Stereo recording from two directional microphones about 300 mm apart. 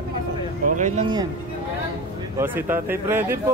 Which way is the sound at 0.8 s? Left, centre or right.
Right.